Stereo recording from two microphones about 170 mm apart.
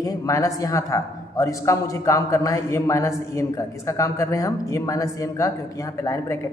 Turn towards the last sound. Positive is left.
turn(degrees=15)  # may be behind; listen again after turning